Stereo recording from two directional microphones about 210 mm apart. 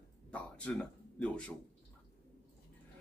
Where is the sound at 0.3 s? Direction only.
5° left (ahead or behind).